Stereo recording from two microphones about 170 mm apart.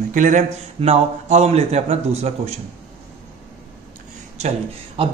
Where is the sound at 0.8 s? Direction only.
40° right (ahead or behind).